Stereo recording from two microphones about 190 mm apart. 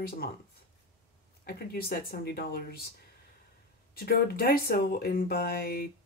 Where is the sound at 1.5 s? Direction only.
55° left (ahead or behind).